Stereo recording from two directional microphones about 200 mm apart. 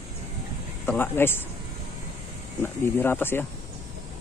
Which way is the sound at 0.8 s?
10° left (ahead or behind).